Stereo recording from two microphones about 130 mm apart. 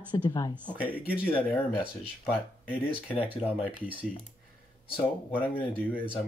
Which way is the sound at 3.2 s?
15° right (ahead or behind).